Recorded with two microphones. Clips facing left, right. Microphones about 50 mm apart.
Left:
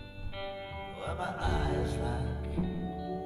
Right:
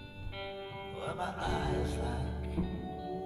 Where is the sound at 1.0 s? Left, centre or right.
Centre.